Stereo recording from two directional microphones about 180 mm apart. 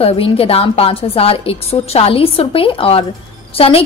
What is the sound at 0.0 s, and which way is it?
A woman's voice, 30° left (ahead or behind).